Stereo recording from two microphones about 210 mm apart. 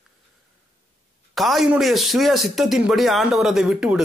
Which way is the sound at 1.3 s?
Centre (ahead or behind).